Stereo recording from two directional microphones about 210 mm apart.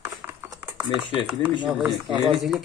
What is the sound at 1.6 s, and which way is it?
Speech, centre (ahead or behind).